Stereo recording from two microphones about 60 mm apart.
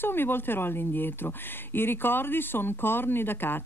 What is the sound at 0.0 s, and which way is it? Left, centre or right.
Speech, left.